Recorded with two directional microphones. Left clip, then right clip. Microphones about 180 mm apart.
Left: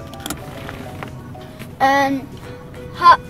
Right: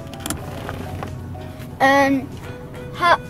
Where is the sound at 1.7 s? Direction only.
15° right (ahead or behind).